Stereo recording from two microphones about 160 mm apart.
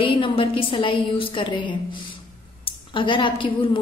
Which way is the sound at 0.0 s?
35° left (ahead or behind).